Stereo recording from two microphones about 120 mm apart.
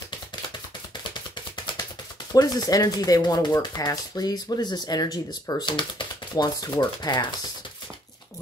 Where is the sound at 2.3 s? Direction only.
30° left (ahead or behind).